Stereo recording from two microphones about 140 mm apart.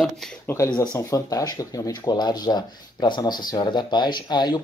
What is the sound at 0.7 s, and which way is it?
Speech, 20° left (ahead or behind).